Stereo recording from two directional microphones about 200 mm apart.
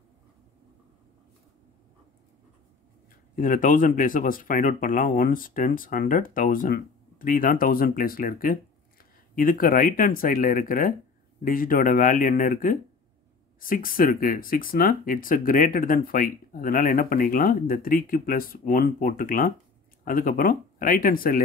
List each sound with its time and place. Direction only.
3.3 s speech: 40° left (ahead or behind)